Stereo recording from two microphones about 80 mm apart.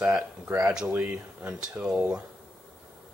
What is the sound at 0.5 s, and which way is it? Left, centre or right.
Speech, right.